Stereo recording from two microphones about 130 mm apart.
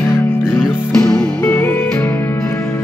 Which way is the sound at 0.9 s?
5° left (ahead or behind).